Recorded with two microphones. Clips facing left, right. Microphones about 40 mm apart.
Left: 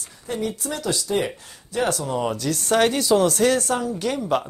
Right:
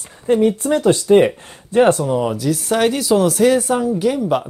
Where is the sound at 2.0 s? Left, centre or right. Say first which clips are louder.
Right 6 dB; centre.